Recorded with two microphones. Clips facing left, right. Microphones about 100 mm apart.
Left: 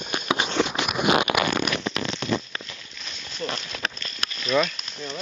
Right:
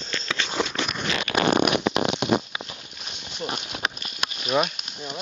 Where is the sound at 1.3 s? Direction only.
40° left (ahead or behind).